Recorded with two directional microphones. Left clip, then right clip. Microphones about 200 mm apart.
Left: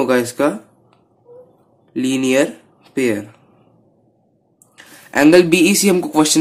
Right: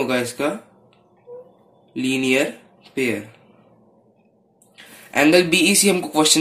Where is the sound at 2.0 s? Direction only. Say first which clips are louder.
Left 3 dB; 15° left (ahead or behind).